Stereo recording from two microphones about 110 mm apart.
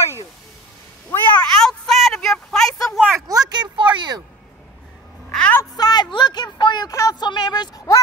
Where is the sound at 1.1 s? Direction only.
15° left (ahead or behind).